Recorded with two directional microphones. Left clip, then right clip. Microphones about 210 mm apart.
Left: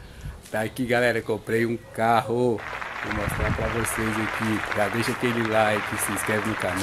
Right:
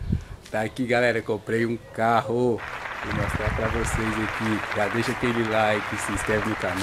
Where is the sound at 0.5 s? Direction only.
10° left (ahead or behind).